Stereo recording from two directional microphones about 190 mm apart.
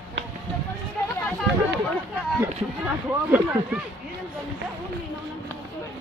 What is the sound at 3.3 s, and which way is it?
Speech, 10° right (ahead or behind).